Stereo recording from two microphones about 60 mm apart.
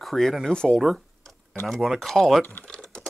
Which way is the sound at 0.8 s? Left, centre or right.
Centre.